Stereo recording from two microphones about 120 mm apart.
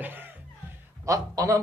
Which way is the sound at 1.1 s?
30° right (ahead or behind).